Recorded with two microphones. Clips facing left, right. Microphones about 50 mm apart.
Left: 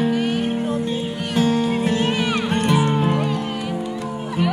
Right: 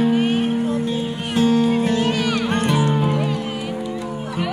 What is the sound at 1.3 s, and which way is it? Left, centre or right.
Music, centre.